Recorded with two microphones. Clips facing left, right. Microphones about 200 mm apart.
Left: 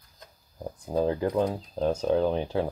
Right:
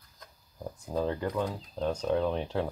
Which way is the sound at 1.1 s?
10° left (ahead or behind).